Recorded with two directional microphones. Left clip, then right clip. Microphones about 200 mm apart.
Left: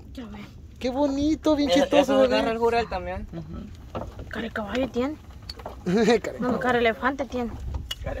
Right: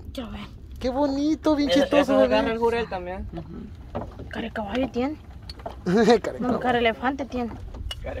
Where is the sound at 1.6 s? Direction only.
20° left (ahead or behind).